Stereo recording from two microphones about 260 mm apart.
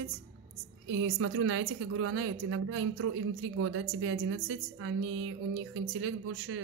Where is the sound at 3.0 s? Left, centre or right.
Right.